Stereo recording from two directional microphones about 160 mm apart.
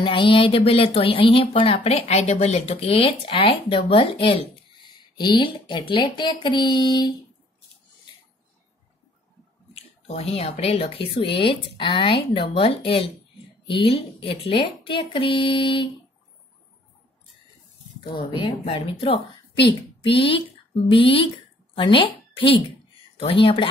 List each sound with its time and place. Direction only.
0.0 s speech: 30° left (ahead or behind)
9.8 s speech: 40° left (ahead or behind)
18.3 s a woman's voice: 35° left (ahead or behind)